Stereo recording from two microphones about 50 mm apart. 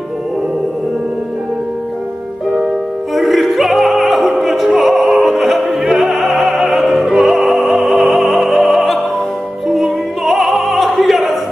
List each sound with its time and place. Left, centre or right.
3.2 s opera: centre